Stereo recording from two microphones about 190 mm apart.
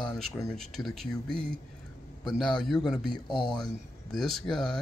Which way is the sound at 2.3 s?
5° left (ahead or behind).